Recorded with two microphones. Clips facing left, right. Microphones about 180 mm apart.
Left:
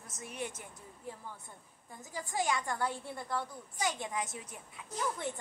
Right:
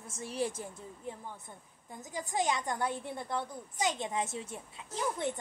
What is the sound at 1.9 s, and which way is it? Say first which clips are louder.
A woman's voice: right 2 dB; 20° right (ahead or behind).